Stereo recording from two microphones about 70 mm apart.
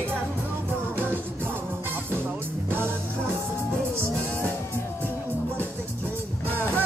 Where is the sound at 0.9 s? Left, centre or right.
Right.